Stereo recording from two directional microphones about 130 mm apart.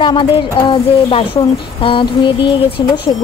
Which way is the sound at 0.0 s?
35° left (ahead or behind).